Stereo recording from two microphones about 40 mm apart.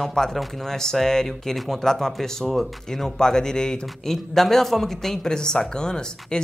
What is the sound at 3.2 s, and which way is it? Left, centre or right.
Speech, centre.